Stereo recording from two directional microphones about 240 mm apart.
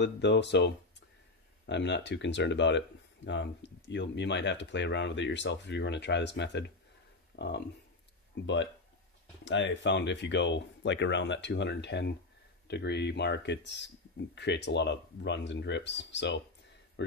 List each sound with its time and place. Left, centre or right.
0.0 s speech: left
1.7 s speech: left
7.3 s a sound: left
9.4 s speech: left